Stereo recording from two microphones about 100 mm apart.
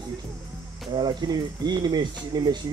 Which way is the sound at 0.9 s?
45° right (ahead or behind).